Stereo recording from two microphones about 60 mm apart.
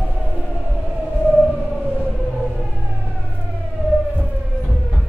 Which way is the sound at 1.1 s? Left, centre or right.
Centre.